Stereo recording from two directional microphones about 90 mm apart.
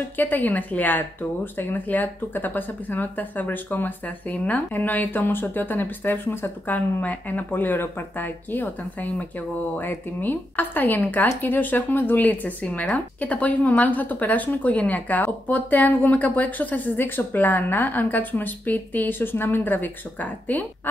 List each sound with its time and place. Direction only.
0.2 s speech: 20° left (ahead or behind)